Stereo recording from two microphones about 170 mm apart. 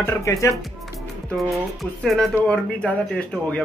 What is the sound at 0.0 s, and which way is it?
Speech, 20° left (ahead or behind).